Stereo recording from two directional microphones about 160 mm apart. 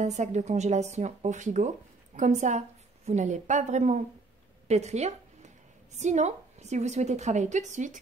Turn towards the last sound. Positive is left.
turn(degrees=-50)  # may be behind; listen again after turning